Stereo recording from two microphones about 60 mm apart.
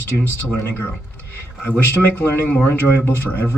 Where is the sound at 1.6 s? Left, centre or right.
Left.